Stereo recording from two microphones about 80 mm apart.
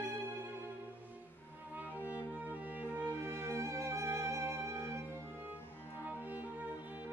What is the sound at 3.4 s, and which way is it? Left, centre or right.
Music, right.